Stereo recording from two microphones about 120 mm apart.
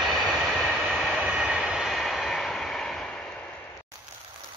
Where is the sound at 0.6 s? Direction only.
5° right (ahead or behind).